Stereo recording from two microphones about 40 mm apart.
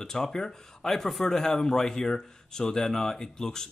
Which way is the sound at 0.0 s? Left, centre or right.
Centre.